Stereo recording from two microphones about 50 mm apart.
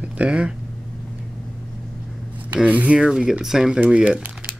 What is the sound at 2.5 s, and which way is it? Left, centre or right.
Speech, right.